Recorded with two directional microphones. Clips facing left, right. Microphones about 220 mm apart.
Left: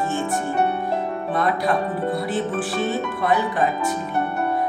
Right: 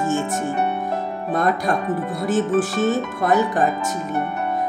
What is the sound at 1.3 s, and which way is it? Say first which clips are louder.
Speech: right 2 dB; 45° right (ahead or behind).